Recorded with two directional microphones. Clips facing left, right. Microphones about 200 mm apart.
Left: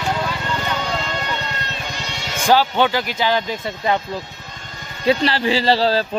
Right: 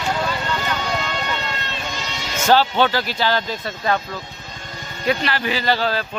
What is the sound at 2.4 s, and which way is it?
Speech, 10° left (ahead or behind).